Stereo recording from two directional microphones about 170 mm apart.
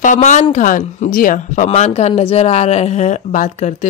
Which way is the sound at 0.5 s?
50° left (ahead or behind).